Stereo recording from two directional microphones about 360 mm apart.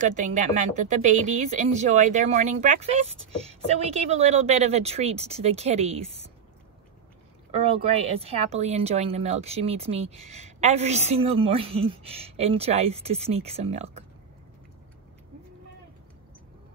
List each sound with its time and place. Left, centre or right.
0.0 s a woman's voice: centre
7.8 s a woman's voice: centre